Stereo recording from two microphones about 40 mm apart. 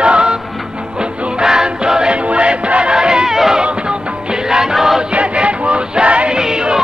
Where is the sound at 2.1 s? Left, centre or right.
Right; by 3.6 s centre.